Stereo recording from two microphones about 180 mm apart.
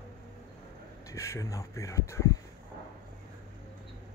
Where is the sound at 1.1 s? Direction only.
15° left (ahead or behind).